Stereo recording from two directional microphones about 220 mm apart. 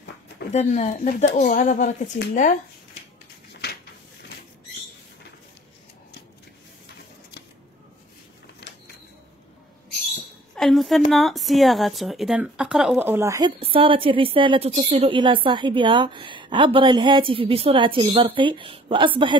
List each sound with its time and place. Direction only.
0.5 s speech: 30° left (ahead or behind)
10.5 s a woman's voice: centre (ahead or behind)
13.6 s a woman's voice: 25° right (ahead or behind)